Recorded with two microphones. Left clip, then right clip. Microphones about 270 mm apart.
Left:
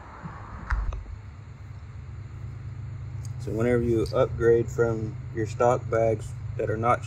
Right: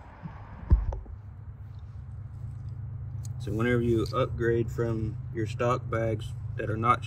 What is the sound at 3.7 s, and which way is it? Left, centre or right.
Speech, left.